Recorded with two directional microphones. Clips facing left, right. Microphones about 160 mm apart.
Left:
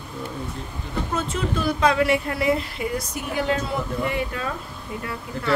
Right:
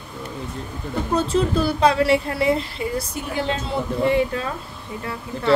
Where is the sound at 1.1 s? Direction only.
35° right (ahead or behind).